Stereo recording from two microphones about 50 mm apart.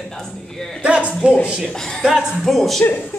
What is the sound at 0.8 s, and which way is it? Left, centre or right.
Speech, right.